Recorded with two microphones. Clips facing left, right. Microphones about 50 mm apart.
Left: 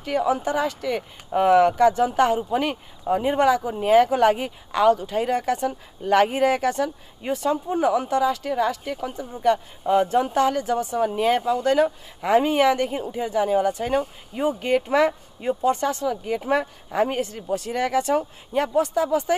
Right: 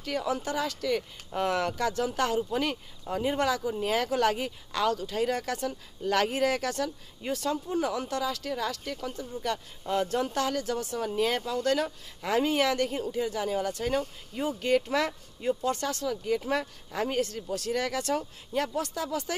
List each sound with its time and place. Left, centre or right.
0.0 s speech: left